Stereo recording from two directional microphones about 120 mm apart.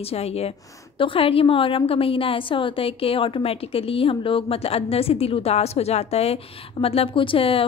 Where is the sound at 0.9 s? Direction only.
50° left (ahead or behind).